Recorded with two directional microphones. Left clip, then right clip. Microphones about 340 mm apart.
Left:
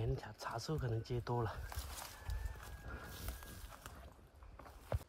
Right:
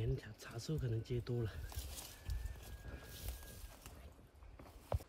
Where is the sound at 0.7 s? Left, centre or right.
Left.